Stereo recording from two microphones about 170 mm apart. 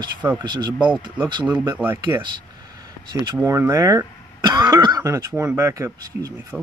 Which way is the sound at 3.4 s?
15° right (ahead or behind).